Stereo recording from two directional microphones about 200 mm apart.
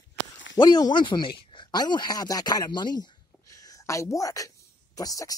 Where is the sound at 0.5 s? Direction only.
20° left (ahead or behind).